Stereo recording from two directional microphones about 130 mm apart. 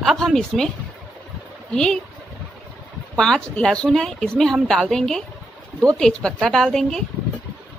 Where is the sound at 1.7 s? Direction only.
5° left (ahead or behind).